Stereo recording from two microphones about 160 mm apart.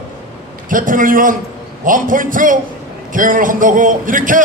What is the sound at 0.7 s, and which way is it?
A man's voice, 55° right (ahead or behind).